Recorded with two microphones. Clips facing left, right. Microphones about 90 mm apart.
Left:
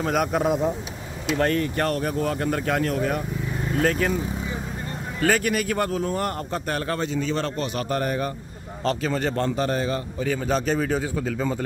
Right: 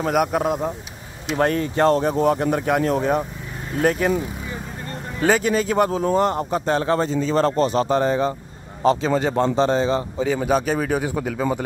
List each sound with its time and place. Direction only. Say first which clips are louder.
0.0 s speech: right 3 dB; 5° right (ahead or behind)
1.3 s a man's voice: right 2 dB; 20° right (ahead or behind)
5.2 s speech: right 4 dB; 20° right (ahead or behind)
7.0 s a man's voice: right 6 dB; 35° right (ahead or behind)
7.8 s a man's voice: right 6 dB; 25° right (ahead or behind)
11.1 s speech: right 2 dB; 20° right (ahead or behind)